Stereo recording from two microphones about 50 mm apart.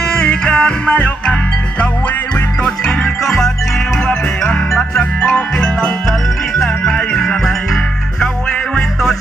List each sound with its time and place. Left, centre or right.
0.1 s music: centre
2.6 s music: centre
6.6 s music: centre